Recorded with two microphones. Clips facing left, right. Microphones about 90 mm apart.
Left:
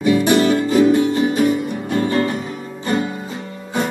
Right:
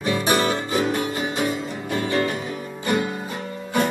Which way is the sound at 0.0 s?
35° right (ahead or behind).